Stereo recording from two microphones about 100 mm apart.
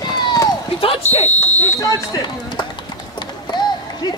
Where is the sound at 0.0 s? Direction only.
45° left (ahead or behind).